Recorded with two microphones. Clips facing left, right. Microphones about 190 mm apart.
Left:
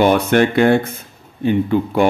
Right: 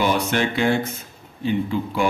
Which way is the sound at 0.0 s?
55° left (ahead or behind).